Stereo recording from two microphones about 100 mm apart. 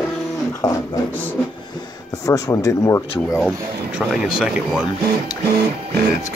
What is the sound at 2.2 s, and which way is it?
Speech, 35° left (ahead or behind).